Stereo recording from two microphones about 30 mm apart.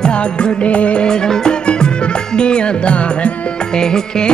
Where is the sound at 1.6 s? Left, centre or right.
Left.